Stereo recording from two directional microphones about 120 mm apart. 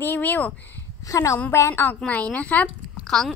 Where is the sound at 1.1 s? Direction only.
25° left (ahead or behind).